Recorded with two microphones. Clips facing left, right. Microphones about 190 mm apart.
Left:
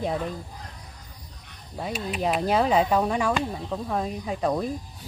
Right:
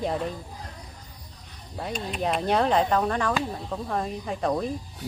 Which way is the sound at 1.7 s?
5° left (ahead or behind).